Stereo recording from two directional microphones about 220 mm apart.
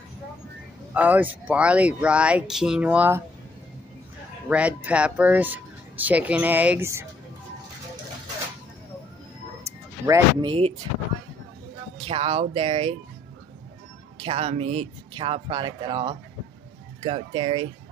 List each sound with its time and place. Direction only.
0.9 s speech: 5° right (ahead or behind)
4.5 s speech: 5° right (ahead or behind)
9.7 s a sound: 15° right (ahead or behind)
12.0 s speech: 25° right (ahead or behind)
14.1 s speech: 25° right (ahead or behind)